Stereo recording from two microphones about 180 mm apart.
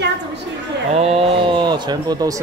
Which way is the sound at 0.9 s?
35° right (ahead or behind).